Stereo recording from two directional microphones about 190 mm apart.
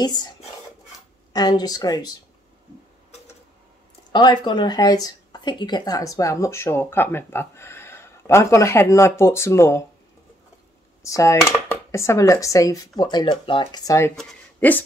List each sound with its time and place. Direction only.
0.0 s speech: 20° left (ahead or behind)
1.3 s speech: 20° left (ahead or behind)
4.1 s speech: 25° left (ahead or behind)
11.0 s speech: 15° left (ahead or behind)